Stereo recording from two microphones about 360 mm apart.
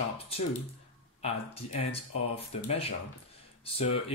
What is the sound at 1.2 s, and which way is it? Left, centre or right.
Speech, centre.